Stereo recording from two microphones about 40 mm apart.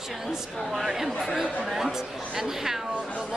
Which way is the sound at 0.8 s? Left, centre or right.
Centre.